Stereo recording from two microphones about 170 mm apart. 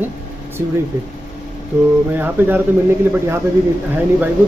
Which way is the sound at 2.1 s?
10° right (ahead or behind).